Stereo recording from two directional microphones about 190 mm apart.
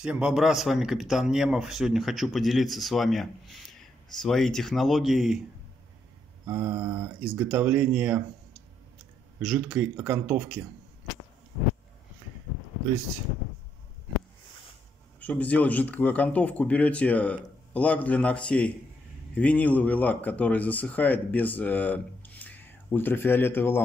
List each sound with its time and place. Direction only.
0.0 s a man's voice: 5° right (ahead or behind)
6.4 s speech: 15° right (ahead or behind)
7.4 s speech: 5° right (ahead or behind)
9.4 s speech: 5° right (ahead or behind)
15.1 s speech: 10° left (ahead or behind)